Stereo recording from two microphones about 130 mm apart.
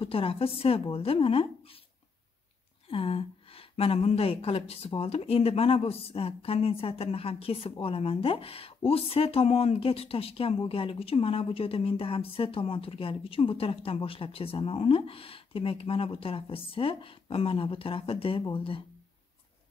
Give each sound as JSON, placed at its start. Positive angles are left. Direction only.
{"t": 0.0, "sound": "speech", "side_deg": 45}
{"t": 2.9, "sound": "speech", "side_deg": 45}